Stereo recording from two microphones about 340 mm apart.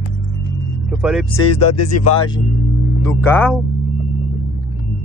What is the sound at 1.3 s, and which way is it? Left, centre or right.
Speech, left.